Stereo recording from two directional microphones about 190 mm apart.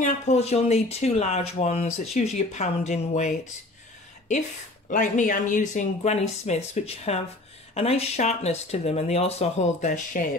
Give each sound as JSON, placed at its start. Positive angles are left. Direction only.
{"t": 0.0, "sound": "speech", "side_deg": 35}
{"t": 4.8, "sound": "speech", "side_deg": 45}